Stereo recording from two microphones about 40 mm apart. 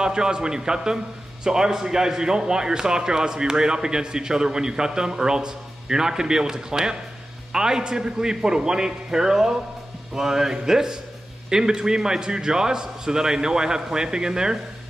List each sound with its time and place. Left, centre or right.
0.0 s a man's voice: centre